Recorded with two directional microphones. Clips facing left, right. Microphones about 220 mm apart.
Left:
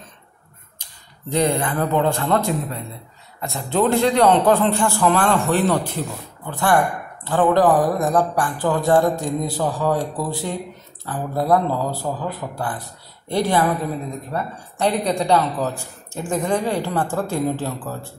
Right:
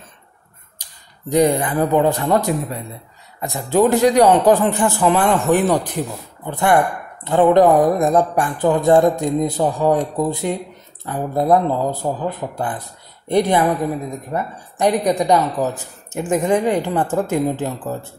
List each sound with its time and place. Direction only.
1.3 s a man's voice: 15° right (ahead or behind)